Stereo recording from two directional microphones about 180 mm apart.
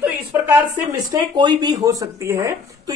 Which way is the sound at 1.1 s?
25° right (ahead or behind).